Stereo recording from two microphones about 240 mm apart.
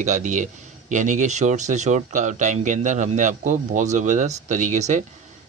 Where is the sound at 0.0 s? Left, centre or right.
Right.